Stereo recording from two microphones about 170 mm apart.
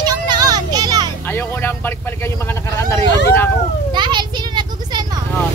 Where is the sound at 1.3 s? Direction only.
10° left (ahead or behind).